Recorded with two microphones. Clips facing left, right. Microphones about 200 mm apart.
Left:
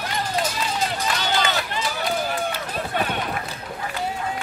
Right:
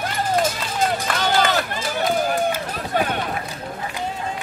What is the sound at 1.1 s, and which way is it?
Run, 50° right (ahead or behind).